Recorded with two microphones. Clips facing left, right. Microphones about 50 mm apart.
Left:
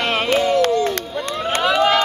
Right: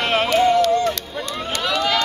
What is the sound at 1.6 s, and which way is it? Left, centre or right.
Vehicle, centre.